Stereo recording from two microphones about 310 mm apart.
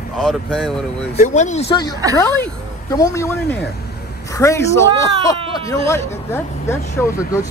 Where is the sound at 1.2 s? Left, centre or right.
Left.